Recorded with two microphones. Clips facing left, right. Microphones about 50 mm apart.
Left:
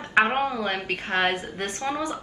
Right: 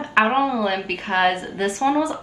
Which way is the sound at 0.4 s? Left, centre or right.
Right.